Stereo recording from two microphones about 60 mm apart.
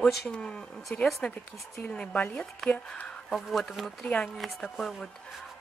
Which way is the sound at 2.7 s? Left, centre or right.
Left.